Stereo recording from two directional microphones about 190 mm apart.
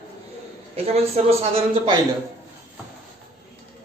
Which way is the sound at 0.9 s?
30° right (ahead or behind).